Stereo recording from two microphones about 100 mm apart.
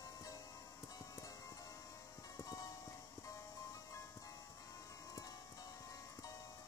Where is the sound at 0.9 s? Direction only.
35° left (ahead or behind).